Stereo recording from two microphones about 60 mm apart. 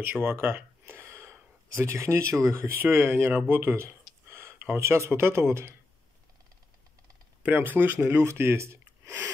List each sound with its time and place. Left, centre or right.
0.1 s a sound: right
1.3 s speech: right
2.7 s speech: right
7.5 s speech: right